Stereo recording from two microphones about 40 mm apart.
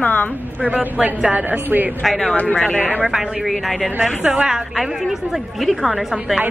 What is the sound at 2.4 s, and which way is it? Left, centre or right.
Speech, left.